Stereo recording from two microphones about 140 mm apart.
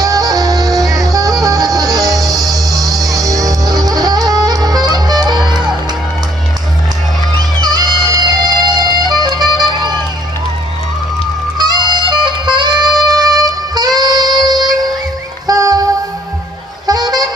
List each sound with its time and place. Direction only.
0.0 s music: 25° right (ahead or behind)
7.3 s music: 30° right (ahead or behind)
11.5 s music: 30° right (ahead or behind)
16.8 s music: 30° right (ahead or behind)